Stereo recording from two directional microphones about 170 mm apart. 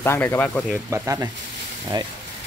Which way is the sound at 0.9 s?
15° right (ahead or behind).